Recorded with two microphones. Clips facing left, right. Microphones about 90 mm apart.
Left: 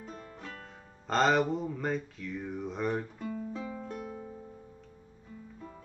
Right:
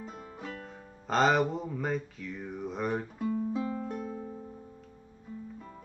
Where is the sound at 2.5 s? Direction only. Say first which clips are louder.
Right 1 dB; centre (ahead or behind).